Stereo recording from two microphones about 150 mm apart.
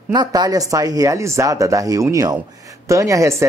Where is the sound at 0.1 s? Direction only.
25° right (ahead or behind).